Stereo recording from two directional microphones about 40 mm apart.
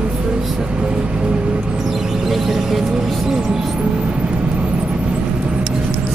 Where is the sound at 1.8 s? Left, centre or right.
Centre.